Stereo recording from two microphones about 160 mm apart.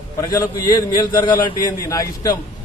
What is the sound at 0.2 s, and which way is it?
A man's voice, 20° left (ahead or behind).